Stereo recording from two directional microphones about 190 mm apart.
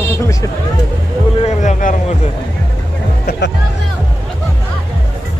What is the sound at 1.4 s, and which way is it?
Speech, 40° left (ahead or behind).